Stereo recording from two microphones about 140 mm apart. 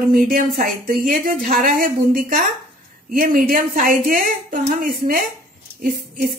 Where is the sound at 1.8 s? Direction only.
90° right.